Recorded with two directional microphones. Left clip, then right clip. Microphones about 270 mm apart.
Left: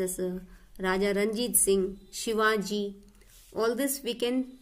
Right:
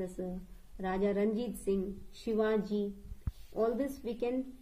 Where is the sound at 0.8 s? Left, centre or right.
Left.